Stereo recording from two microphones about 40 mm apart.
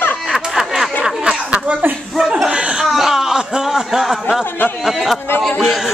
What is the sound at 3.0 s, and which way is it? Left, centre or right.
Speech, centre.